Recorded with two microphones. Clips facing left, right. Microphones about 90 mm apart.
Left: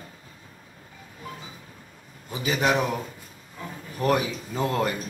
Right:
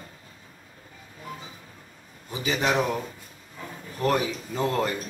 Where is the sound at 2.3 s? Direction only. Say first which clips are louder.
Left 2 dB; 5° left (ahead or behind).